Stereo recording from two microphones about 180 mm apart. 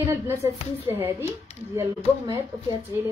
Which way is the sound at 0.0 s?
15° right (ahead or behind).